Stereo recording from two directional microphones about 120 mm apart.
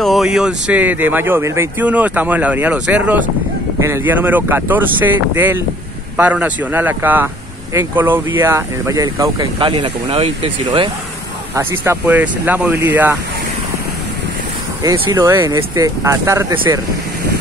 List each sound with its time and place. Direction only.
0.0 s speech: centre (ahead or behind); by 9.5 s 30° right (ahead or behind)
9.6 s speech: 45° right (ahead or behind)
11.5 s speech: 20° right (ahead or behind)
14.8 s speech: 35° right (ahead or behind)